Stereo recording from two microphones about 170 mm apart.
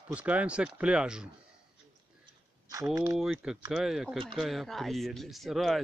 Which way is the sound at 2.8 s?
15° right (ahead or behind).